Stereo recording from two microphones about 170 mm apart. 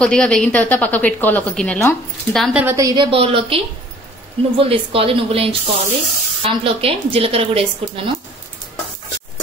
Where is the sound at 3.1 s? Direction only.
35° right (ahead or behind).